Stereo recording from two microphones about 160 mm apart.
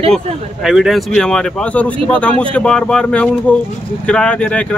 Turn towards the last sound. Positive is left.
turn(degrees=5)  # may be behind; listen again after turning